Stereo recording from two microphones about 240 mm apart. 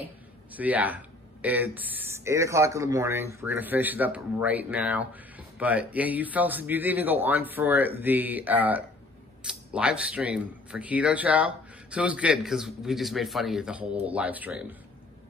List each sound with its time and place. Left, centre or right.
0.5 s speech: centre